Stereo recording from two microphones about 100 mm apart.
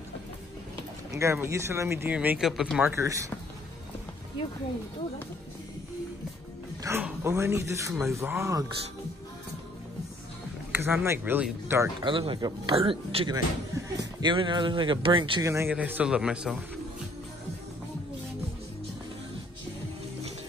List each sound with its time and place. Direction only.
1.1 s speech: 30° right (ahead or behind)
2.1 s a man's voice: 10° right (ahead or behind)
2.8 s speech: 25° right (ahead or behind)
6.8 s speech: 35° right (ahead or behind)
10.7 s speech: 25° right (ahead or behind)
12.0 s speech: 55° right (ahead or behind)
12.7 s speech: 65° right (ahead or behind)
13.9 s speech: 50° right (ahead or behind)
15.4 s speech: 25° right (ahead or behind)
15.7 s a man's voice: 15° right (ahead or behind)